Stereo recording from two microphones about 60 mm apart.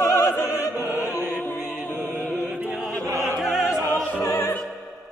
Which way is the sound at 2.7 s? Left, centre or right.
Centre.